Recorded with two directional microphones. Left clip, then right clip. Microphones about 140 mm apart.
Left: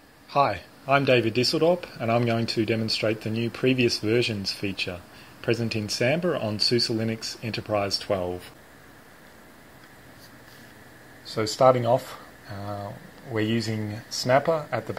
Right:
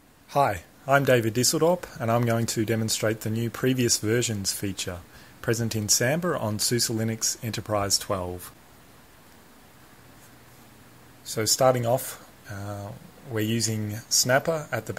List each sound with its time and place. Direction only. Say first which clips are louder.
0.3 s speech: left 1 dB; 65° right (ahead or behind); by 8.3 s 45° right (ahead or behind)
11.3 s speech: left 2 dB; 40° right (ahead or behind)